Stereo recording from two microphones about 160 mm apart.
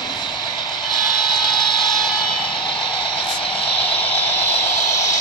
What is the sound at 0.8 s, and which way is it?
Vehicle, 30° left (ahead or behind).